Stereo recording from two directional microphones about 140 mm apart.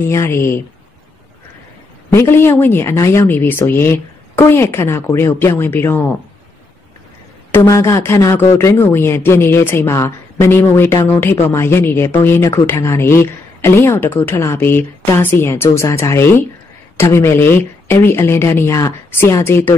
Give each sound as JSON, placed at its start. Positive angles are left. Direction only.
{"t": 0.1, "sound": "speech", "side_deg": 20}
{"t": 2.1, "sound": "speech", "side_deg": 15}
{"t": 7.5, "sound": "speech", "side_deg": 20}